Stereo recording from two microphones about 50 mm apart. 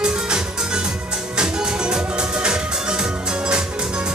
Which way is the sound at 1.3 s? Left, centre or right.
Centre.